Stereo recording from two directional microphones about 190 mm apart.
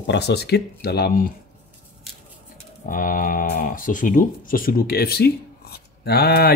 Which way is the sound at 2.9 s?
45° left (ahead or behind).